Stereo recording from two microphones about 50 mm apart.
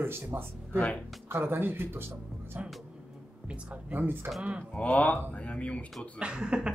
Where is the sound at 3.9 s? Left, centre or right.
Right.